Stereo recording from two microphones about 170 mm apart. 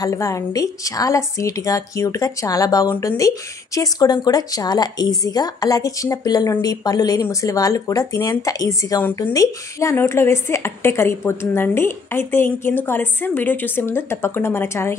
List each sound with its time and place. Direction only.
0.0 s a woman's voice: 20° left (ahead or behind)